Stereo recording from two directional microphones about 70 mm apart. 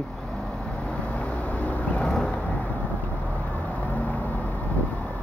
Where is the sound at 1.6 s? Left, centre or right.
Left.